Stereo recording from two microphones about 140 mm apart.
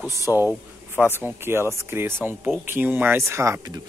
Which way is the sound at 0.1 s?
20° right (ahead or behind).